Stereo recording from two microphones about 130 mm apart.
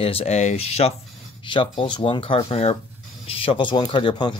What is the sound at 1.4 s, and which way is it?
Speech, 40° left (ahead or behind).